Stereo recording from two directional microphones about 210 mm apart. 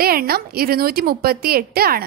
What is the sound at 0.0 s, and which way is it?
A woman's voice, 45° right (ahead or behind).